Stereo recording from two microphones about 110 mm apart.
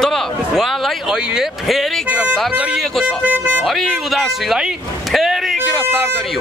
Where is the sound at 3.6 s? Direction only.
Centre (ahead or behind).